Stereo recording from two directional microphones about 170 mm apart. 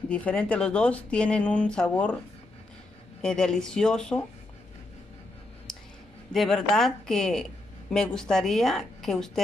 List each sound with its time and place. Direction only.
0.1 s speech: 5° left (ahead or behind)
3.2 s a woman's voice: 5° left (ahead or behind)
5.7 s a sound: centre (ahead or behind)
6.3 s a woman's voice: centre (ahead or behind)